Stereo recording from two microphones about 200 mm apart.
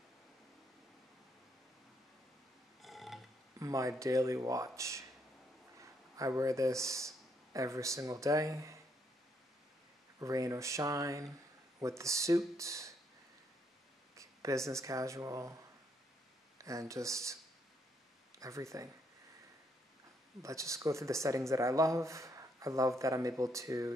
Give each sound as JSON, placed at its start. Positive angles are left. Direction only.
{"t": 2.8, "sound": "burping", "side_deg": 0}
{"t": 3.5, "sound": "speech", "side_deg": -15}
{"t": 10.1, "sound": "speech", "side_deg": -15}
{"t": 14.1, "sound": "speech", "side_deg": -15}
{"t": 16.5, "sound": "speech", "side_deg": -15}
{"t": 18.4, "sound": "speech", "side_deg": -15}
{"t": 20.4, "sound": "speech", "side_deg": -15}